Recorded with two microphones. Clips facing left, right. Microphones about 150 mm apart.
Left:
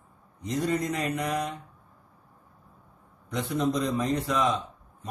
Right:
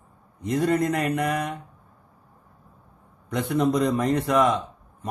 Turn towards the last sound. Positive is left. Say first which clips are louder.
# right 5 dB
turn(degrees=-60)  # may be behind; listen again after turning